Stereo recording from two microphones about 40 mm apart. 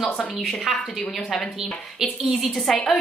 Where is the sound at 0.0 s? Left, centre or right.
Left.